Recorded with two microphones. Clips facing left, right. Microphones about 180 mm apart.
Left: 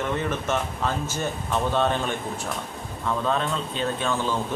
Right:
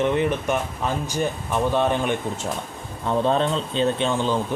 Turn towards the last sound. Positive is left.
turn(degrees=-20)  # may be behind; listen again after turning